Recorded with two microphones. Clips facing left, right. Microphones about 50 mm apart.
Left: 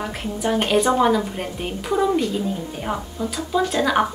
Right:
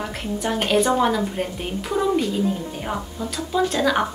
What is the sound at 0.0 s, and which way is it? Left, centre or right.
A woman's voice, centre.